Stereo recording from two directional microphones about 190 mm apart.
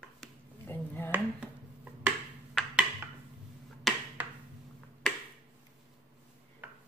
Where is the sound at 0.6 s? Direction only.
10° left (ahead or behind).